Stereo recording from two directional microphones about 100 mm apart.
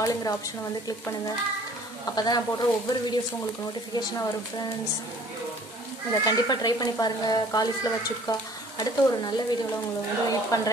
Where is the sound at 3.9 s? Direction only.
35° left (ahead or behind).